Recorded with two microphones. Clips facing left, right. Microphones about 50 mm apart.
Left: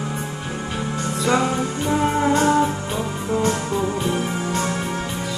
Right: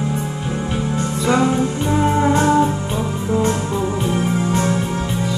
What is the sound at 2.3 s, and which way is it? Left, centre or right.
Music, right.